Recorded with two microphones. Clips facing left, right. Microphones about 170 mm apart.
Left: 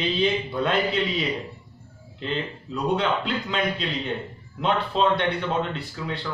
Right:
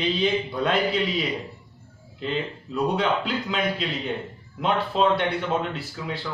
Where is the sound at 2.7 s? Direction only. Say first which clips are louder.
Right 1 dB; 5° right (ahead or behind).